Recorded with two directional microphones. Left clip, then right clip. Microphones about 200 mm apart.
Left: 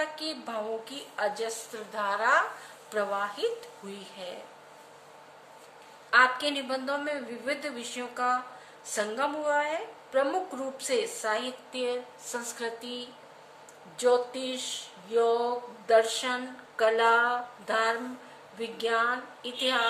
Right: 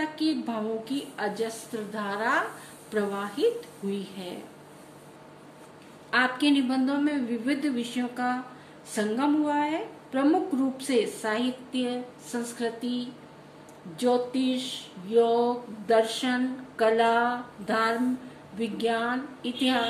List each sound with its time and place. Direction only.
0.0 s a woman's voice: 20° left (ahead or behind)
6.0 s a woman's voice: 15° left (ahead or behind)